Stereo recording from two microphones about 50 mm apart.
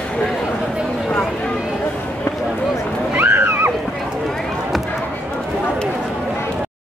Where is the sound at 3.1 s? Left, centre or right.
Right.